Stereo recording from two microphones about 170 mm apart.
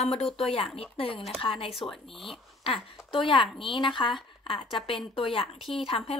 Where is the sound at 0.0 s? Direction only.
35° left (ahead or behind).